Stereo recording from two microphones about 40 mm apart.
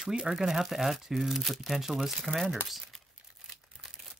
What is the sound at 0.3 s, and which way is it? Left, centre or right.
Speech, centre.